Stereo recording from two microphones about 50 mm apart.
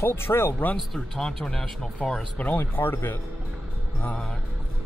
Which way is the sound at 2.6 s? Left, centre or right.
Left.